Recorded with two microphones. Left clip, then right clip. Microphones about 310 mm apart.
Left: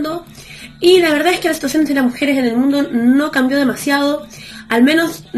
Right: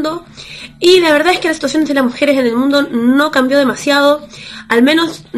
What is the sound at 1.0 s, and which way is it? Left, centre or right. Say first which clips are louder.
A woman's voice: right 3 dB; centre.